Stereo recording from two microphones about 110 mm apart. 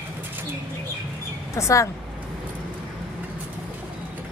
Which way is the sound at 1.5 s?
25° left (ahead or behind).